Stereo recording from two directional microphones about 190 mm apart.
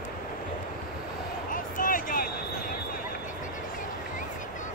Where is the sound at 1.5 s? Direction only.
45° left (ahead or behind).